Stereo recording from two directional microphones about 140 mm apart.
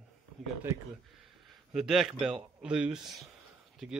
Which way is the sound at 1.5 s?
5° right (ahead or behind).